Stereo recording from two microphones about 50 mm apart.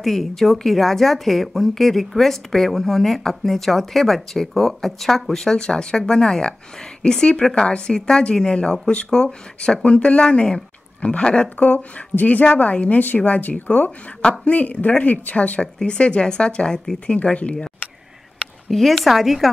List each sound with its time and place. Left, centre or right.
0.0 s a woman's voice: centre; by 17.6 s left
18.7 s speech: centre